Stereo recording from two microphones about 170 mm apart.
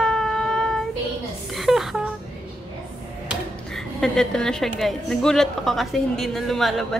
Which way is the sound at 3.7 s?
5° left (ahead or behind).